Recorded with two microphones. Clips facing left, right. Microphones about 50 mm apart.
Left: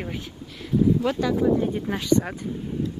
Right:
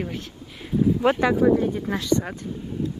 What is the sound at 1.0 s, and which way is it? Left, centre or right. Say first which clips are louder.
Speech: right 4 dB; right.